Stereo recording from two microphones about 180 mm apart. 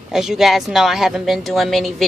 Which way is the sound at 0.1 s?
Centre (ahead or behind).